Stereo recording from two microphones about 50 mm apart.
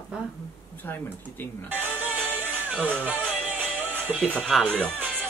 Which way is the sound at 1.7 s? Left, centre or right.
Right.